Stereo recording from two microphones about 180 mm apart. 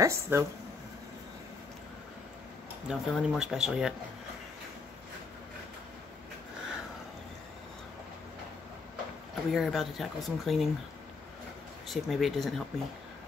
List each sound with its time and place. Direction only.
0.0 s speech: 15° right (ahead or behind)
2.9 s speech: 5° right (ahead or behind)
9.5 s speech: centre (ahead or behind)
11.9 s speech: centre (ahead or behind)